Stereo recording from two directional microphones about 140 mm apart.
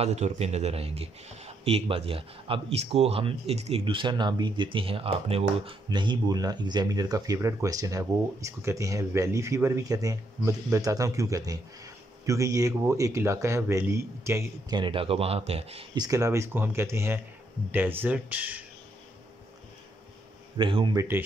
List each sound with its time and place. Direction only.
0.0 s speech: 50° right (ahead or behind); by 14.4 s 20° right (ahead or behind)
14.7 s speech: 35° right (ahead or behind)
15.9 s speech: 25° right (ahead or behind)
20.5 s speech: 35° right (ahead or behind)